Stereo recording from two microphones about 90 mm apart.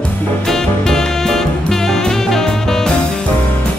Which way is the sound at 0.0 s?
5° left (ahead or behind).